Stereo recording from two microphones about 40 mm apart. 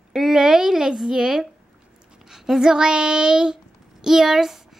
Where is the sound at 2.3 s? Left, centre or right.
Centre.